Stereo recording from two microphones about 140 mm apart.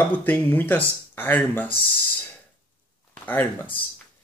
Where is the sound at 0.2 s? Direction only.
15° left (ahead or behind).